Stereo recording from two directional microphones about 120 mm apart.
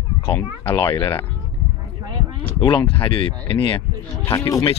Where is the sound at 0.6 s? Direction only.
40° left (ahead or behind).